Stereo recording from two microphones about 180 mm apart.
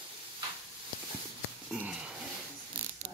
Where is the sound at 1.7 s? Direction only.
5° right (ahead or behind).